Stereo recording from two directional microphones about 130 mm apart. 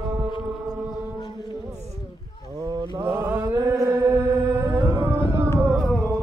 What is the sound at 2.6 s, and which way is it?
Mantra, 30° right (ahead or behind).